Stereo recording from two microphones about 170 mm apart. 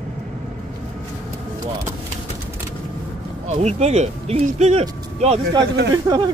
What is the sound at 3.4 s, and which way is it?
Speech, 40° right (ahead or behind).